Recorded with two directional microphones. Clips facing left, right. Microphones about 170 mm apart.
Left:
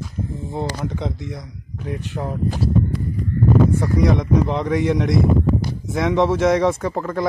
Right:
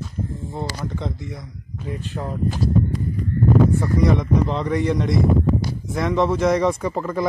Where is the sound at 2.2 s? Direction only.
10° left (ahead or behind).